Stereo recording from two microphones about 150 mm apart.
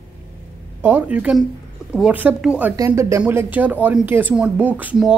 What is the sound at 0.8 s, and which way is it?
Speech, 10° right (ahead or behind).